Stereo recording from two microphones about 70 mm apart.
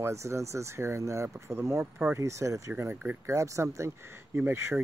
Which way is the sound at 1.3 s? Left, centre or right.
Right.